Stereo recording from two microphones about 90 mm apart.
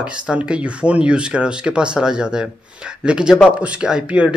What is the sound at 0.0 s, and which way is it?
A man's voice, 10° right (ahead or behind).